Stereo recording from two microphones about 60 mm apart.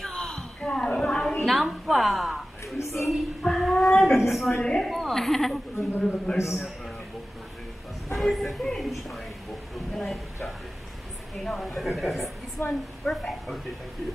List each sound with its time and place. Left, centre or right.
0.1 s a sound: centre
2.8 s a woman's voice: left
3.1 s a sound: centre
4.3 s a woman's voice: centre
4.6 s speech: centre
4.8 s a woman's voice: centre
6.3 s a man's voice: left
8.1 s a woman's voice: centre
12.6 s a woman's voice: left
13.0 s a woman's voice: centre